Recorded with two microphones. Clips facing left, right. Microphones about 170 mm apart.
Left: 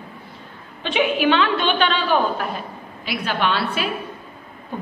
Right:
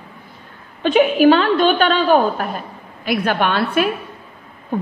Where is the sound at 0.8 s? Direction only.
45° right (ahead or behind).